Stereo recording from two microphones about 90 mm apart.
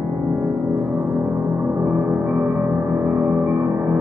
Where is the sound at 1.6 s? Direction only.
20° right (ahead or behind).